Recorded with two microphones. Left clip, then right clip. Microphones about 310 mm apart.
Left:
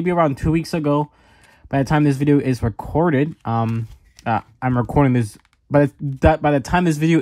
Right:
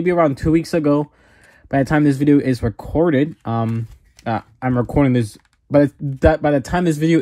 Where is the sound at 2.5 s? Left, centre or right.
Left.